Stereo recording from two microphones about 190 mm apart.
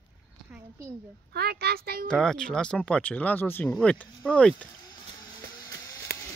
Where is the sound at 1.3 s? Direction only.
55° right (ahead or behind).